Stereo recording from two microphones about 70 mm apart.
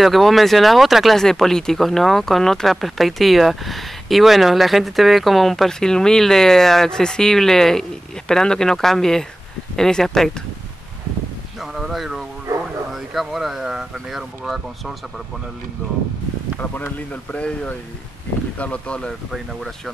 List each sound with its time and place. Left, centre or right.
0.0 s speech: centre
11.6 s speech: centre
16.5 s speech: left
19.3 s speech: centre